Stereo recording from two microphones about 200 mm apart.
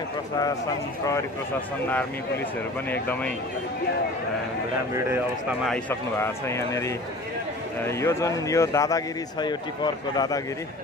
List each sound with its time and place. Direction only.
2.9 s a man's voice: 10° left (ahead or behind)
4.9 s speech: 10° right (ahead or behind)
5.7 s a man's voice: 10° left (ahead or behind)